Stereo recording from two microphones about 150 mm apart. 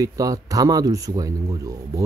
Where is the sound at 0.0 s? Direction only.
25° right (ahead or behind).